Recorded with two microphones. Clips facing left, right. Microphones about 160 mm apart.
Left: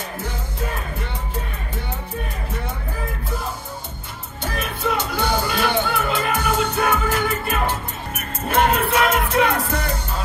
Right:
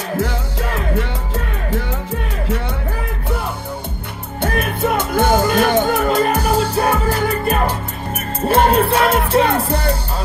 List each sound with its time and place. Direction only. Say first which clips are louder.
0.2 s music: right 7 dB; 90° right
4.4 s music: right 8 dB; 55° right (ahead or behind); by 9.8 s 30° right (ahead or behind)